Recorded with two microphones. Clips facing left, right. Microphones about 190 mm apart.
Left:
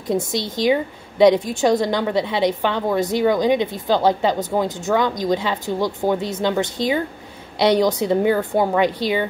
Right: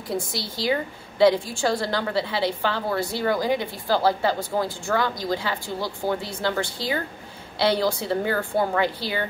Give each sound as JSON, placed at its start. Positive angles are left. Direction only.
{"t": 0.1, "sound": "a woman's voice", "side_deg": 20}